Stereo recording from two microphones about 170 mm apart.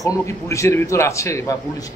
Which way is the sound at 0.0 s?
20° left (ahead or behind).